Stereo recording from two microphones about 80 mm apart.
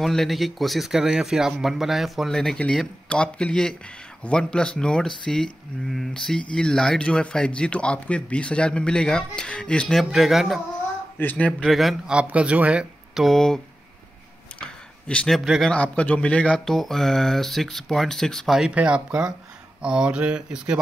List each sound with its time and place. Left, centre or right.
0.0 s speech: centre
9.9 s speech: centre
11.1 s a man's voice: centre
11.6 s speech: centre
12.1 s speech: centre
13.1 s speech: centre
14.6 s a sound: centre
15.6 s speech: centre
18.8 s speech: centre